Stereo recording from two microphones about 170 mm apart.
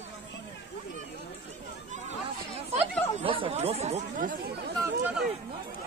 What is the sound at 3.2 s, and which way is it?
Speech, 30° right (ahead or behind).